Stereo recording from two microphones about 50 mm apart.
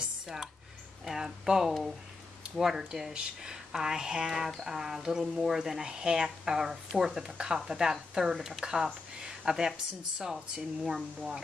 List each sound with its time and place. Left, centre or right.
1.0 s speech: centre